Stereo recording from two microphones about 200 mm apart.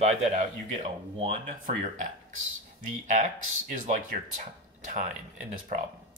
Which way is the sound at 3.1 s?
40° right (ahead or behind).